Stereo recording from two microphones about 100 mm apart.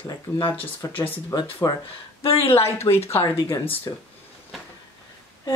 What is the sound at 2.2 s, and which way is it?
Speech, 75° left (ahead or behind).